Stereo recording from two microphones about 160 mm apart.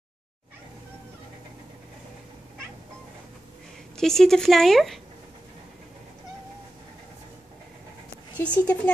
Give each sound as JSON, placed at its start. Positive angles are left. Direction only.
{"t": 3.9, "sound": "speech", "side_deg": 5}
{"t": 8.4, "sound": "speech", "side_deg": 10}